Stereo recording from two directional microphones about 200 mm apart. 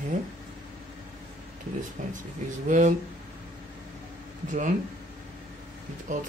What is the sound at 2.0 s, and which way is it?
Speech, 40° right (ahead or behind).